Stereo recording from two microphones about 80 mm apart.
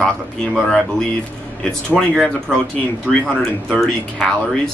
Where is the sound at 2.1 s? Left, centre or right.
Centre.